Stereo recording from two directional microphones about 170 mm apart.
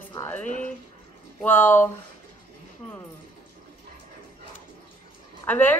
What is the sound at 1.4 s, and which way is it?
Speech, 10° left (ahead or behind).